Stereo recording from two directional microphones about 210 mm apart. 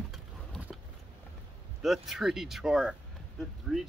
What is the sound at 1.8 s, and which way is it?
Speech, centre (ahead or behind).